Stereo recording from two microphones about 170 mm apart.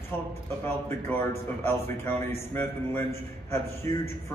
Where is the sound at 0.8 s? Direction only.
15° left (ahead or behind).